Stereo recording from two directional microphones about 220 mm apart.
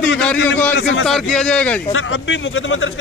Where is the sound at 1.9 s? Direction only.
65° left (ahead or behind).